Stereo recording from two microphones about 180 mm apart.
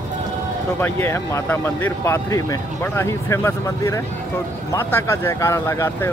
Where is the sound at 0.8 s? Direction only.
15° left (ahead or behind).